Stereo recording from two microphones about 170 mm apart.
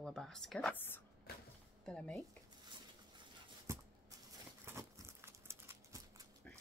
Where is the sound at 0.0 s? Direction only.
5° left (ahead or behind).